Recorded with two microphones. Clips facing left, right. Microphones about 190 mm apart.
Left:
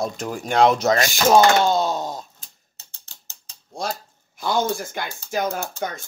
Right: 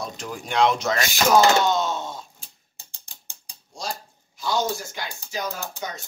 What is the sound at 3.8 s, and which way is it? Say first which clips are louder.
Speech: left 4 dB; 55° left (ahead or behind).